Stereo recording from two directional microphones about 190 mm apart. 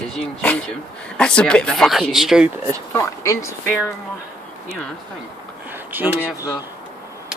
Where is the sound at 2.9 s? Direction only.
15° left (ahead or behind).